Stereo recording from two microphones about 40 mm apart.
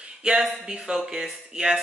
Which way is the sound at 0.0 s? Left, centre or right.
Right.